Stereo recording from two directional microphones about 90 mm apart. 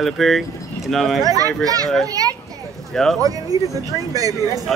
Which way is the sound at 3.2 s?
40° right (ahead or behind).